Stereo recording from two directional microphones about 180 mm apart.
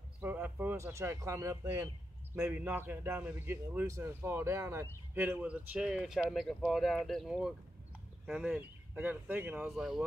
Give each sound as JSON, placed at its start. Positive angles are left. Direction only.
{"t": 0.2, "sound": "a man's voice", "side_deg": -10}